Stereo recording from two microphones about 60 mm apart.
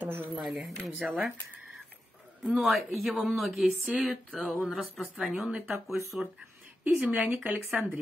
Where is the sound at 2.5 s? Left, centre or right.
Centre.